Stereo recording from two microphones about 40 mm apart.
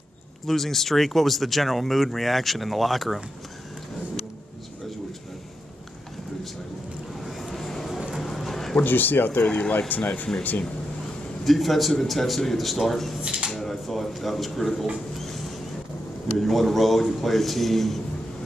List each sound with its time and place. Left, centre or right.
0.5 s speech: centre
7.2 s vehicle: centre
8.1 s clip-clop: centre
8.7 s speech: left
9.5 s speech: left
11.4 s speech: centre
13.2 s speech: right
13.5 s speech: centre
16.3 s speech: centre